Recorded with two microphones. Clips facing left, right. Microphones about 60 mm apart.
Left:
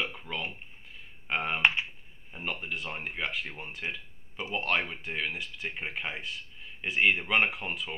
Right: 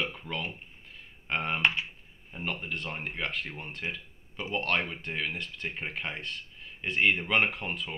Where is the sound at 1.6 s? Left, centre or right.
Left.